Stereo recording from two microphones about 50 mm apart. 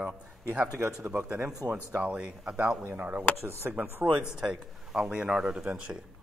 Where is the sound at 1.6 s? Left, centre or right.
Right.